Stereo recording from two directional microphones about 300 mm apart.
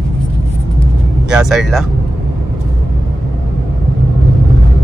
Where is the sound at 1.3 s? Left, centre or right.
Centre.